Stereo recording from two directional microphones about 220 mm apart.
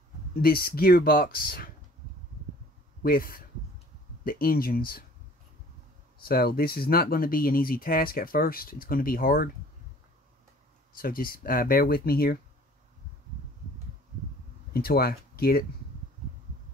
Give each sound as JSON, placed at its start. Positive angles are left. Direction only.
{"t": 0.4, "sound": "speech", "side_deg": 40}
{"t": 3.0, "sound": "speech", "side_deg": 40}
{"t": 6.2, "sound": "speech", "side_deg": 45}
{"t": 10.9, "sound": "speech", "side_deg": 40}
{"t": 14.7, "sound": "speech", "side_deg": 45}